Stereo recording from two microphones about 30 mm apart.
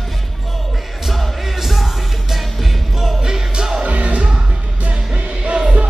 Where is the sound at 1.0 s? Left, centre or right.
Centre.